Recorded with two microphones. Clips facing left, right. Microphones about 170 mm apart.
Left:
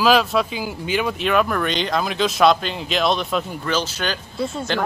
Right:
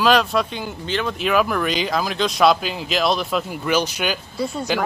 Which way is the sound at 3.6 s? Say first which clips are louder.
Right 6 dB; 15° right (ahead or behind).